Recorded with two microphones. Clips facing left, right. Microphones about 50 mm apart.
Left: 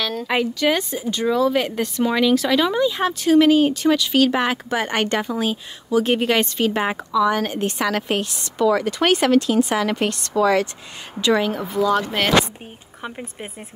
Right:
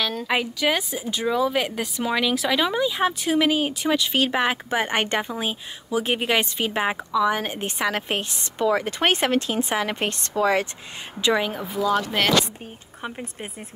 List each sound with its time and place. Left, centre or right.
0.0 s speech: centre; by 10.7 s right
11.3 s speech: centre
13.0 s speech: centre